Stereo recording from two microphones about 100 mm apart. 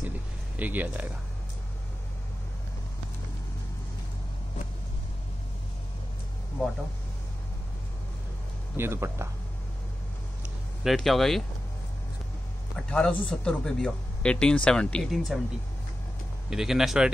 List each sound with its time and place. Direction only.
0.6 s speech: 15° right (ahead or behind)
8.7 s speech: 25° right (ahead or behind)
10.8 s speech: centre (ahead or behind)
12.7 s a man's voice: 10° left (ahead or behind)
16.4 s speech: 5° right (ahead or behind)